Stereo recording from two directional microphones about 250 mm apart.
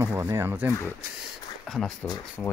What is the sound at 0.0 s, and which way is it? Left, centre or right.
Speech, centre.